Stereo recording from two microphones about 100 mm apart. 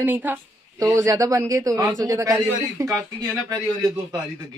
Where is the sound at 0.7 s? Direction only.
30° right (ahead or behind).